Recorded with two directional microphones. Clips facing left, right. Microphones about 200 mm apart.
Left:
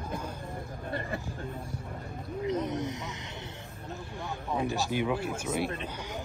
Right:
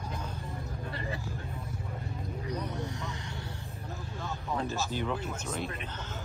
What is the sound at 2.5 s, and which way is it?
Speech, 20° left (ahead or behind).